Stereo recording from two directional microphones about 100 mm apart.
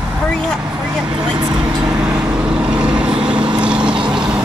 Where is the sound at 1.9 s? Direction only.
10° right (ahead or behind).